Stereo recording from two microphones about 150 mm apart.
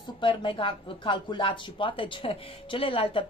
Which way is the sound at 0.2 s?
35° left (ahead or behind).